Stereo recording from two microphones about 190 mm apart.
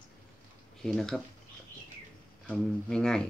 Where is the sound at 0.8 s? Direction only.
Centre (ahead or behind).